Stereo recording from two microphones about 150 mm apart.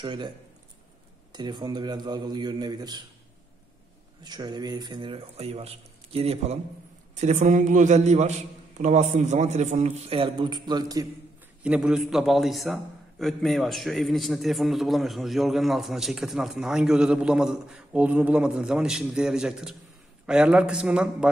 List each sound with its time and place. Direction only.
0.0 s speech: 30° right (ahead or behind)
1.3 s a man's voice: 30° right (ahead or behind)
4.2 s a man's voice: 25° right (ahead or behind)
11.6 s a man's voice: 5° right (ahead or behind)